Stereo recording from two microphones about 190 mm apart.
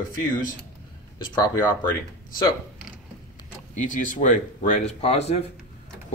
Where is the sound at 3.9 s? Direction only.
40° left (ahead or behind).